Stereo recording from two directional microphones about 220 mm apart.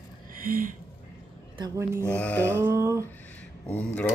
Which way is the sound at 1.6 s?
15° right (ahead or behind).